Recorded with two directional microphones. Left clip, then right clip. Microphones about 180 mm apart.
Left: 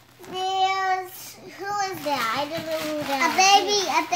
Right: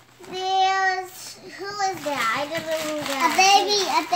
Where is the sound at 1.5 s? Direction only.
5° left (ahead or behind).